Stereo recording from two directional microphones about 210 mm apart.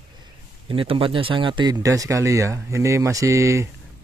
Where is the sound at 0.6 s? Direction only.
25° right (ahead or behind).